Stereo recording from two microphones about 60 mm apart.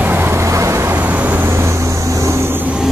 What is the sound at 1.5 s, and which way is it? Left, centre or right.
Vehicle, right.